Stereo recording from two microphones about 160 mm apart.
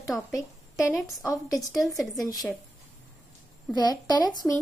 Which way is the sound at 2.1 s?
20° left (ahead or behind).